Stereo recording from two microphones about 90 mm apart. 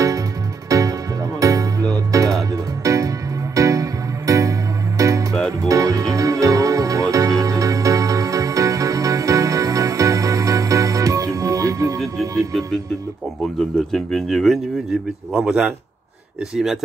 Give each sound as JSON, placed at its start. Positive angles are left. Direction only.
{"t": 0.7, "sound": "music", "side_deg": -40}
{"t": 13.4, "sound": "a sound", "side_deg": 5}
{"t": 15.3, "sound": "speech", "side_deg": -5}